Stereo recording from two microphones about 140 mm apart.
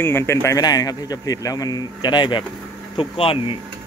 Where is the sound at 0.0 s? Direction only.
20° left (ahead or behind); by 3.5 s 40° left (ahead or behind).